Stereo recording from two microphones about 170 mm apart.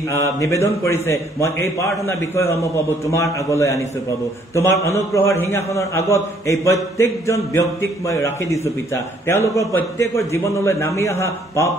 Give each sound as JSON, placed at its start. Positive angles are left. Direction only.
{"t": 0.1, "sound": "a man's voice", "side_deg": 15}